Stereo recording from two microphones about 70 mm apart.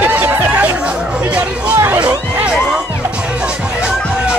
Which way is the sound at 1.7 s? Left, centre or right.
Right.